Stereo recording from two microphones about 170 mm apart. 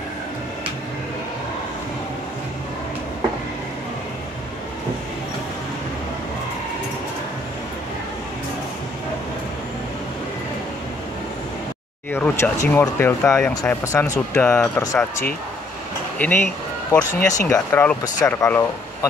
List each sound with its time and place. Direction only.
12.1 s speech: 15° left (ahead or behind)
16.2 s speech: 10° left (ahead or behind)